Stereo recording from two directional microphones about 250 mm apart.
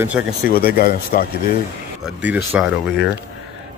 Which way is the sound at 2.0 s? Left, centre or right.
Centre.